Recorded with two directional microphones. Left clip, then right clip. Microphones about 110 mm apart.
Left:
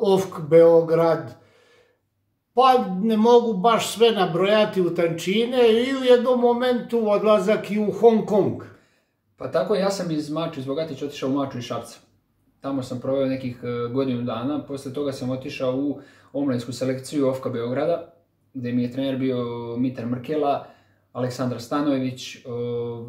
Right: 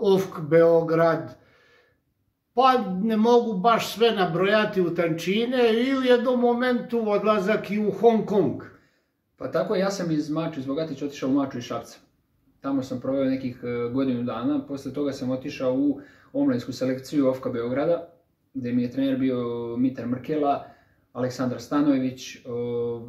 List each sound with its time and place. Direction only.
0.0 s a man's voice: 30° left (ahead or behind)
2.5 s a man's voice: 30° left (ahead or behind)
9.4 s speech: 15° left (ahead or behind)